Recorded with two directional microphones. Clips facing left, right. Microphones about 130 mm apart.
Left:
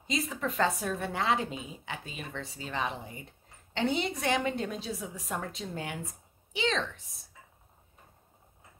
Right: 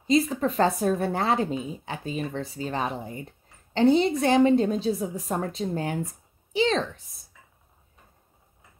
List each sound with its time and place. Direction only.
0.0 s speech: 35° right (ahead or behind)